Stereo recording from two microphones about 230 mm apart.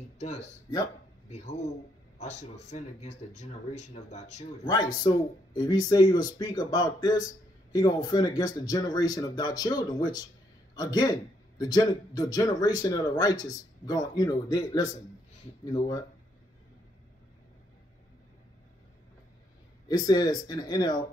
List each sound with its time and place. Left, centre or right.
0.2 s speech: left
4.6 s speech: centre
19.9 s speech: centre